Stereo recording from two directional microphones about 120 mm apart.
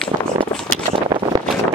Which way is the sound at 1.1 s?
40° right (ahead or behind).